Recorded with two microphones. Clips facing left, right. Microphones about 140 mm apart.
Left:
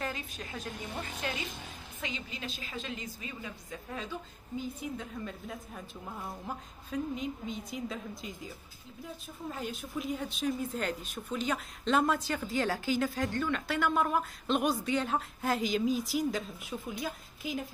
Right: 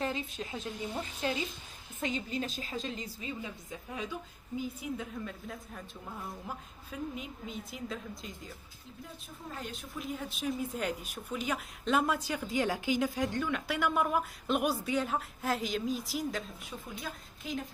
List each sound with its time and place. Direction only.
0.0 s a woman's voice: 25° right (ahead or behind)
2.0 s a woman's voice: 45° right (ahead or behind); by 3.5 s 25° right (ahead or behind)
3.9 s a woman's voice: 15° right (ahead or behind)
9.6 s a woman's voice: 5° left (ahead or behind)